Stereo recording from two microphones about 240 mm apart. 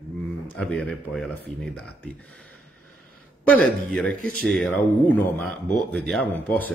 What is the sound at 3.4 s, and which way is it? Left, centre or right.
Speech, centre.